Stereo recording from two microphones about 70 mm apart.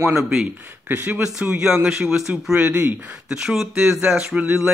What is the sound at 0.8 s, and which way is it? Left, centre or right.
Speech, right.